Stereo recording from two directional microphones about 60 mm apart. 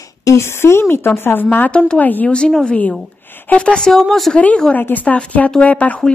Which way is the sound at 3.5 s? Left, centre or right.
Centre.